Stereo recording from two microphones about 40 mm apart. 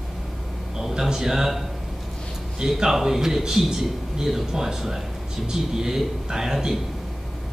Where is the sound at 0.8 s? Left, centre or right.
Centre.